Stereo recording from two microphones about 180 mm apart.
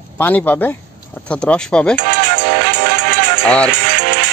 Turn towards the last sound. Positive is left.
turn(degrees=-70)  # may be behind; listen again after turning